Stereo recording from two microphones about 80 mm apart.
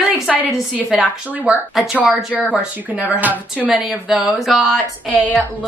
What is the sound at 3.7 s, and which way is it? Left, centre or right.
Speech, centre.